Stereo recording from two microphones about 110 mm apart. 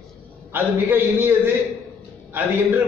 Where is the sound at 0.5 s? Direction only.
20° right (ahead or behind).